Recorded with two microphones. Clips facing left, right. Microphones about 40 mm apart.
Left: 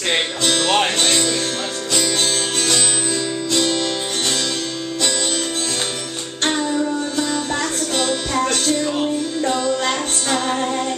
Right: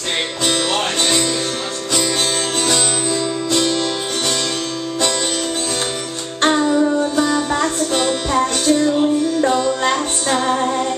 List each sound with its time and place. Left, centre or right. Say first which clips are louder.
1.0 s music: right 1 dB; centre
2.6 s music: right 2 dB; centre
7.2 s music: right 4 dB; centre
10.3 s music: right 3 dB; centre